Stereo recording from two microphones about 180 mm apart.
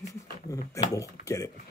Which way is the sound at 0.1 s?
20° left (ahead or behind).